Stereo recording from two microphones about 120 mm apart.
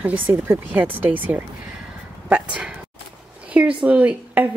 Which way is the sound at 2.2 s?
10° right (ahead or behind).